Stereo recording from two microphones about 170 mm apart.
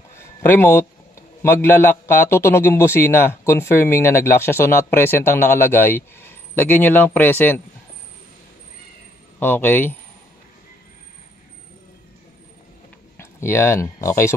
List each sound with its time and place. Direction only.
0.1 s a sound: 15° left (ahead or behind)
1.4 s a man's voice: 15° left (ahead or behind)
9.4 s a man's voice: 10° left (ahead or behind)
13.2 s speech: 15° left (ahead or behind)